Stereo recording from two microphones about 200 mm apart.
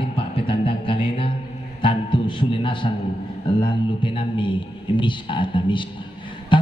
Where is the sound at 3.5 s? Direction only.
25° left (ahead or behind).